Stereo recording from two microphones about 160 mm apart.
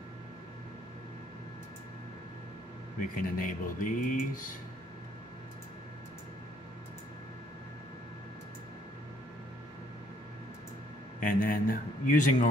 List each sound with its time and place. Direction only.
3.0 s speech: 60° left (ahead or behind)
11.1 s speech: 60° left (ahead or behind)